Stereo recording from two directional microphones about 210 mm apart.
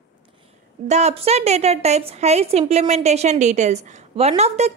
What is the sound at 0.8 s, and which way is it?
A woman's voice, 30° right (ahead or behind).